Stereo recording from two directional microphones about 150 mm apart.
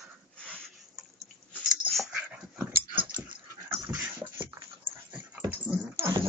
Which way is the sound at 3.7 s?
20° right (ahead or behind).